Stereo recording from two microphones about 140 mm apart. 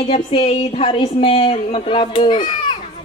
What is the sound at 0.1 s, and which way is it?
A woman's voice, 40° left (ahead or behind).